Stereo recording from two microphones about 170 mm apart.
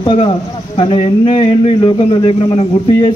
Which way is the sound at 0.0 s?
35° left (ahead or behind).